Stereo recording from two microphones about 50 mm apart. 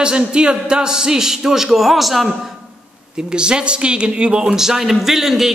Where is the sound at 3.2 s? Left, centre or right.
Centre.